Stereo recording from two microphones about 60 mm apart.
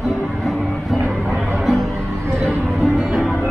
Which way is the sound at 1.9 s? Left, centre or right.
Right.